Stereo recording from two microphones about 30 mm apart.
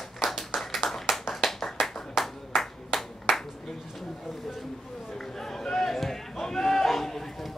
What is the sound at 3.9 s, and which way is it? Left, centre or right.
Chatter, centre.